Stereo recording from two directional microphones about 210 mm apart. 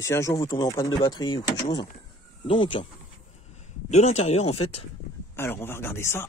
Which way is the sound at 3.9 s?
30° left (ahead or behind).